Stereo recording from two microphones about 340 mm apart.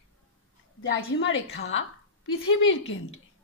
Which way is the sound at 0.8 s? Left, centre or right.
Left.